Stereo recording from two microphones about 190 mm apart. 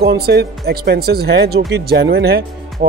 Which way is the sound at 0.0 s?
55° right (ahead or behind).